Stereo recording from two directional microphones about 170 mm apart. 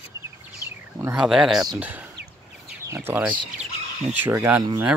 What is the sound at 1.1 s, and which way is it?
Speech, 5° right (ahead or behind).